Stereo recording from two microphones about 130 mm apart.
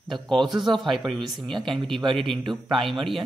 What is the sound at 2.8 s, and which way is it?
Speech, centre (ahead or behind).